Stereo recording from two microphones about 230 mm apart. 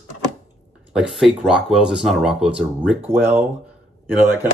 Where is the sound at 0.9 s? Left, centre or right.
Centre.